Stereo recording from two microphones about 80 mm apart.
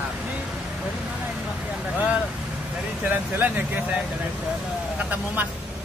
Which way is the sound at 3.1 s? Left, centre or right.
Right.